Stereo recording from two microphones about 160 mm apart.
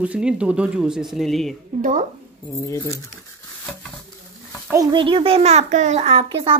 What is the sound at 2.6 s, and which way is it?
Speech, 20° left (ahead or behind).